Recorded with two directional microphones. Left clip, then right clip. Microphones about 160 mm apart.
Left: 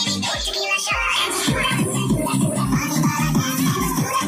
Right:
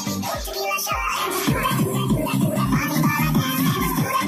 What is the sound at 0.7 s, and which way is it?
Music, 20° right (ahead or behind).